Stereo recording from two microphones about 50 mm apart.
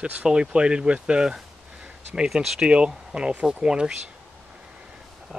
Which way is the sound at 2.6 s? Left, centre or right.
Right.